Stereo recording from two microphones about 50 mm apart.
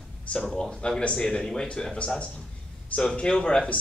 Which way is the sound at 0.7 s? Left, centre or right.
Centre.